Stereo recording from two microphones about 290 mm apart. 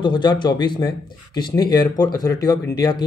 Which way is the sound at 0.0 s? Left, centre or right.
Centre.